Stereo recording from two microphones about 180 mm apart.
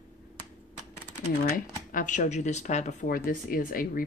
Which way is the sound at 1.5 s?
45° left (ahead or behind).